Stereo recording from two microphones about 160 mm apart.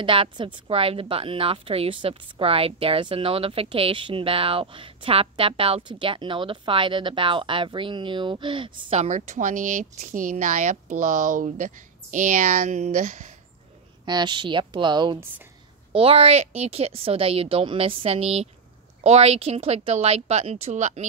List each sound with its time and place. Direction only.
0.0 s a woman's voice: 30° right (ahead or behind); by 13.3 s 50° right (ahead or behind)
14.0 s a woman's voice: 25° right (ahead or behind); by 21.0 s 45° right (ahead or behind)